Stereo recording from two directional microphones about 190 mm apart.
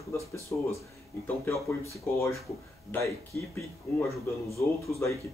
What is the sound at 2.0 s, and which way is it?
Speech, 15° left (ahead or behind).